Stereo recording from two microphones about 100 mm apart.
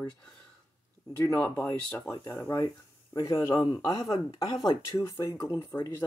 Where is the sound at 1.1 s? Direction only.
20° left (ahead or behind).